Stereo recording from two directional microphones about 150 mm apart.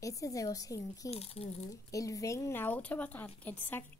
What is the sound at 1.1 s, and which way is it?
Speech, 45° left (ahead or behind).